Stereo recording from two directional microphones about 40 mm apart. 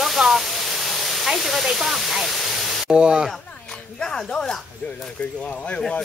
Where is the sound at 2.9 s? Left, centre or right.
Right.